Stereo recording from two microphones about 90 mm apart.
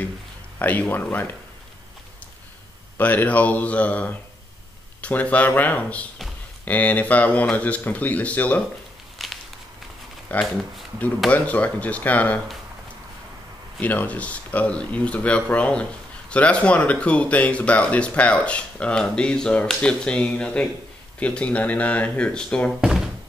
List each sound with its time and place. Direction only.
0.6 s speech: 20° left (ahead or behind)
3.0 s speech: 20° left (ahead or behind)
9.2 s a sound: centre (ahead or behind)
10.3 s speech: 15° left (ahead or behind)
13.7 s speech: 20° left (ahead or behind)
22.7 s speech: 5° right (ahead or behind)